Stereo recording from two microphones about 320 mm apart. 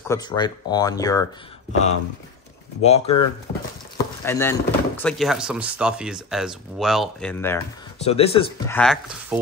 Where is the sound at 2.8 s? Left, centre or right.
Centre.